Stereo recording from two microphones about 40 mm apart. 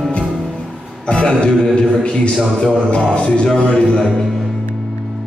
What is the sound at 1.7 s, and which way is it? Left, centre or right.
A man's voice, left.